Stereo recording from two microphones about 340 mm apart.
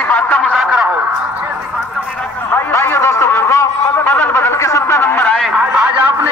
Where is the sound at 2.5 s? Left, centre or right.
Centre.